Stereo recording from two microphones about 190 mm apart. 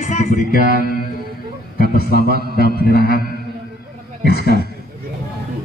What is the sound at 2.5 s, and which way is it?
Speech, 55° left (ahead or behind).